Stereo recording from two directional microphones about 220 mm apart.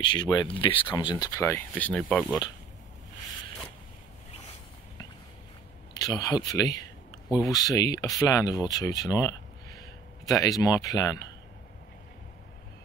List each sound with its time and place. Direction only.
0.0 s speech: 20° left (ahead or behind); by 2.3 s 5° left (ahead or behind)
5.9 s speech: 15° left (ahead or behind)